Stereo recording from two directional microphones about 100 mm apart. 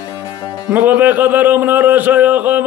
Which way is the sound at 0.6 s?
15° right (ahead or behind).